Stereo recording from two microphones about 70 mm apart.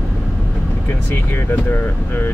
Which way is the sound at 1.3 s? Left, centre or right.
Left.